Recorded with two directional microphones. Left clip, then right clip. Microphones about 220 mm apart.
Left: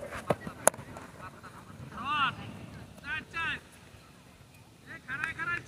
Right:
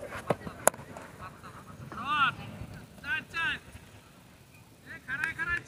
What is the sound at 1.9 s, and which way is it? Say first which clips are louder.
Vehicle: right 2 dB; 50° right (ahead or behind).